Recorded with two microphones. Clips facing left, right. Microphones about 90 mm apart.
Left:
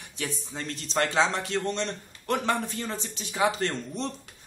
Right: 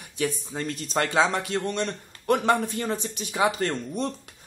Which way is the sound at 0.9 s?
10° right (ahead or behind).